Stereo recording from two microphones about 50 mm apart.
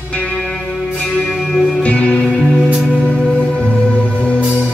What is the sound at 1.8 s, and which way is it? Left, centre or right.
Music, left.